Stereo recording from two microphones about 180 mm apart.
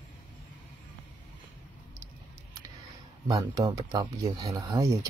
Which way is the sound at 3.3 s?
20° right (ahead or behind).